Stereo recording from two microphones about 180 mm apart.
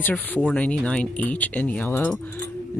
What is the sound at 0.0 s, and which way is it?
Speech, 10° left (ahead or behind).